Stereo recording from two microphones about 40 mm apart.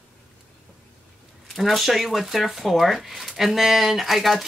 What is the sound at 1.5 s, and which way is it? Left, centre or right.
Speech, centre.